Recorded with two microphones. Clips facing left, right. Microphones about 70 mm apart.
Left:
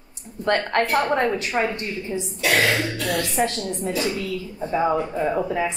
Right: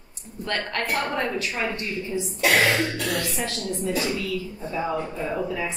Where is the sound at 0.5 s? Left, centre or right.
Left.